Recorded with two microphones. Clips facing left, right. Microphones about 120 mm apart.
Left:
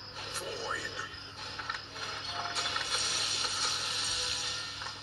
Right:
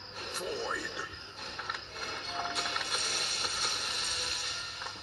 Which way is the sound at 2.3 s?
Centre (ahead or behind).